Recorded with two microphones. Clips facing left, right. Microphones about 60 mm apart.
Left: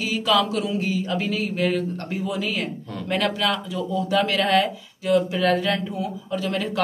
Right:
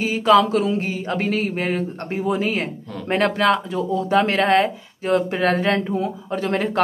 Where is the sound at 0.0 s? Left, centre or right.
Right.